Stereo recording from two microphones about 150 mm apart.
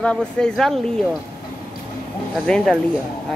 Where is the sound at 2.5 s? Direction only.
5° left (ahead or behind).